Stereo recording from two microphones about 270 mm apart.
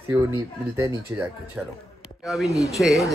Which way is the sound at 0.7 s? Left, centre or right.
Centre.